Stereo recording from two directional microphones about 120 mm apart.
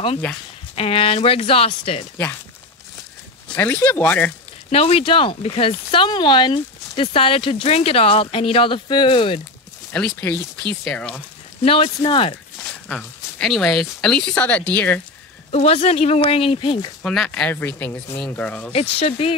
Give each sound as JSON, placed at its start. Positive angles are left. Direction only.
{"t": 0.7, "sound": "speech", "side_deg": 50}
{"t": 3.4, "sound": "speech", "side_deg": 15}
{"t": 4.6, "sound": "speech", "side_deg": 55}
{"t": 9.9, "sound": "speech", "side_deg": 10}
{"t": 11.6, "sound": "speech", "side_deg": 55}
{"t": 12.6, "sound": "speech", "side_deg": 5}
{"t": 15.5, "sound": "speech", "side_deg": 60}
{"t": 17.0, "sound": "speech", "side_deg": 5}
{"t": 18.7, "sound": "speech", "side_deg": 55}